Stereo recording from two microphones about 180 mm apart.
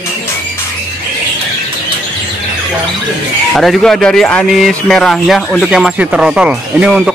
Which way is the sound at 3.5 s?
Centre (ahead or behind).